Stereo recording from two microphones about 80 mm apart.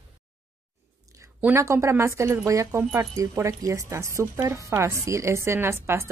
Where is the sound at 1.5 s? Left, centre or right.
Right.